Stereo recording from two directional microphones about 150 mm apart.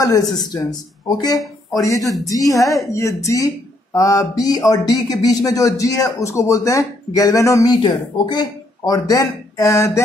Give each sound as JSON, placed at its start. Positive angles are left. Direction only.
{"t": 0.4, "sound": "speech", "side_deg": 25}